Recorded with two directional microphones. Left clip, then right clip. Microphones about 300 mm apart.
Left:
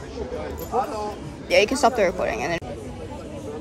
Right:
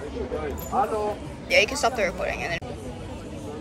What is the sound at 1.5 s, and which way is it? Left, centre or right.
Speech, left.